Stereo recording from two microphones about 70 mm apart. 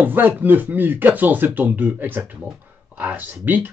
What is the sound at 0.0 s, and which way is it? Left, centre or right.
Speech, right.